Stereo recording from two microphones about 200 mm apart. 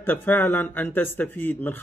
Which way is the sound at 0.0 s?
10° left (ahead or behind).